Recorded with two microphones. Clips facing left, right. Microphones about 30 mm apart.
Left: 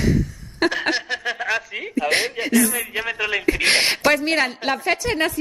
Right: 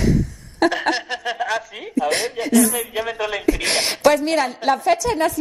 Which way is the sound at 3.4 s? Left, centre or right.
Left.